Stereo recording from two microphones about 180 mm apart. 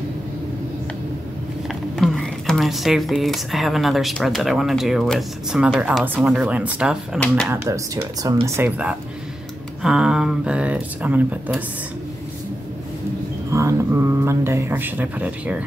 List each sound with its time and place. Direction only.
1.7 s speech: centre (ahead or behind)
13.5 s speech: 15° right (ahead or behind)